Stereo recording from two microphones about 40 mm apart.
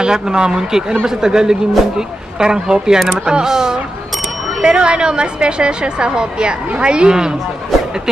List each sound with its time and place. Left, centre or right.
0.0 s a woman's voice: centre
4.6 s a woman's voice: right